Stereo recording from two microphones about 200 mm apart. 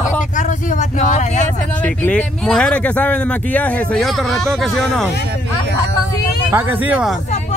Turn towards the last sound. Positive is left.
turn(degrees=-5)  # may be behind; listen again after turning